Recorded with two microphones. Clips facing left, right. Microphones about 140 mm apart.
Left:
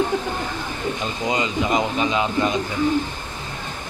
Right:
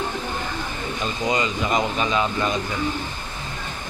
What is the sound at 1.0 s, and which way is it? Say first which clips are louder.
Speech: right 2 dB; 20° left (ahead or behind).